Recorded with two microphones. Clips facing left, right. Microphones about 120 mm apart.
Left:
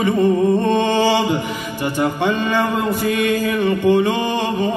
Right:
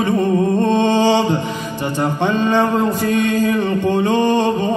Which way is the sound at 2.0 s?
25° right (ahead or behind).